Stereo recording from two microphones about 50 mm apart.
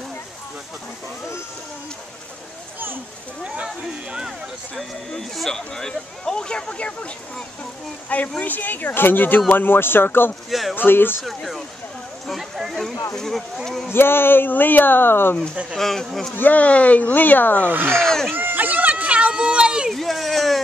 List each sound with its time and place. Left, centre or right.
5.1 s speech: centre; by 7.1 s left
8.4 s speech: left
11.2 s speech: centre
12.3 s a sound: centre
13.1 s speech: centre
13.9 s speech: left
15.7 s speech: centre
16.3 s speech: left
17.6 s speech: right
18.0 s speech: centre
18.3 s a sound: right; by 19.9 s centre
19.9 s a sound: centre